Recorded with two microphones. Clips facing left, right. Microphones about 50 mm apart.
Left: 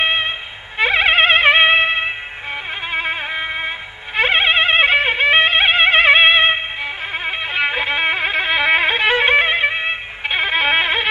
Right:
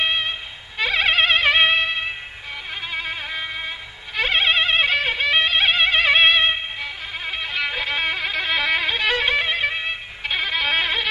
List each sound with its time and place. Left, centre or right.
0.0 s music: left